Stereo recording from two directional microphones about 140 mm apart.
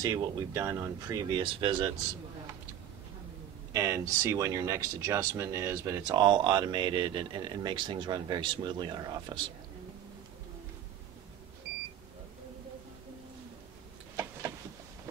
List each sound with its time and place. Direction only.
0.0 s speech: 25° right (ahead or behind)
3.7 s speech: 20° right (ahead or behind)